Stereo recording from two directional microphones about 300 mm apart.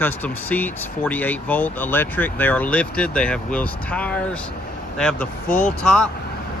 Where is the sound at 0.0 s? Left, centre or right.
Centre.